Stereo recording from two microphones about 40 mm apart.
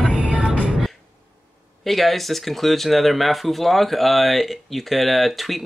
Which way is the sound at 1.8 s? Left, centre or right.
Centre.